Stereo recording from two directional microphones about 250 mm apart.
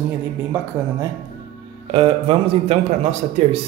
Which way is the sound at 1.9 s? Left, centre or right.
Right.